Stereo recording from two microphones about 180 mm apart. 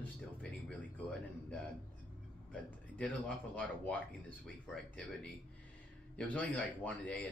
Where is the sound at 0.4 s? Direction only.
5° left (ahead or behind).